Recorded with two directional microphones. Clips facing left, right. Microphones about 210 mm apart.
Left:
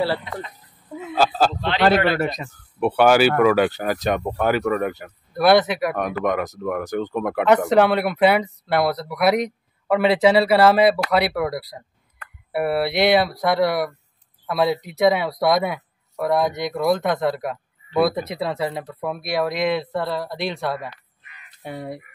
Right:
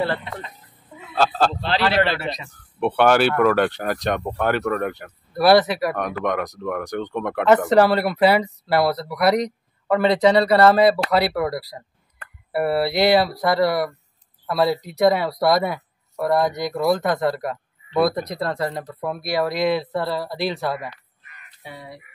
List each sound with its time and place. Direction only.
1.1 s speech: 5° left (ahead or behind)
2.1 s speech: 50° left (ahead or behind)
2.8 s speech: 5° left (ahead or behind)
21.2 s caw: 45° right (ahead or behind)
21.6 s speech: 50° left (ahead or behind)